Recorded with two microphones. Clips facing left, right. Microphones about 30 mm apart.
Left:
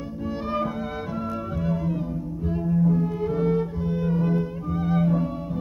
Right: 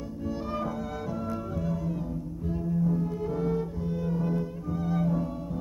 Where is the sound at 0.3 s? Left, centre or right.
Left.